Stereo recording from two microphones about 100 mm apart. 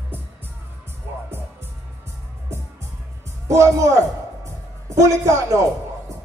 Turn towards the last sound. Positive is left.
turn(degrees=-30)  # may be behind; listen again after turning